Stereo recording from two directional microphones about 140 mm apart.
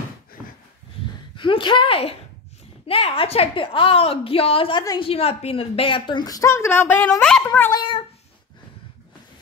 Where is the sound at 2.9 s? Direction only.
40° left (ahead or behind); by 7.7 s 15° left (ahead or behind).